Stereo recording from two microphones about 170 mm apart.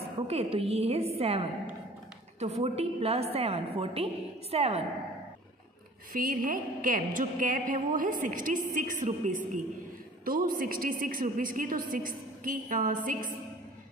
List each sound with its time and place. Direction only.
0.3 s a woman's voice: 35° right (ahead or behind)
2.4 s a woman's voice: 35° right (ahead or behind)
6.1 s a woman's voice: 55° right (ahead or behind)